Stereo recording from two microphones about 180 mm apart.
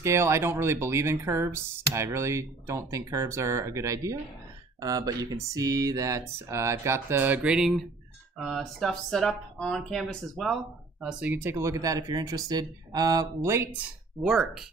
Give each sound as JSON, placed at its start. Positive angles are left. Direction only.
{"t": 0.0, "sound": "speech", "side_deg": -15}